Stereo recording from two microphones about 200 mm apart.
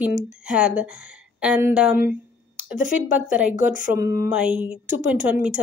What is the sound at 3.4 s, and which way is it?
Speech, 5° right (ahead or behind).